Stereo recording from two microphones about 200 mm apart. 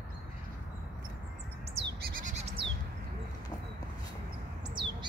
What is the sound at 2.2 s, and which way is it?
Bleat, 35° right (ahead or behind).